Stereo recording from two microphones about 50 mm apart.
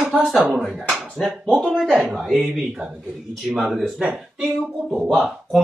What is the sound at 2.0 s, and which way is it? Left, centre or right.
Speech, centre.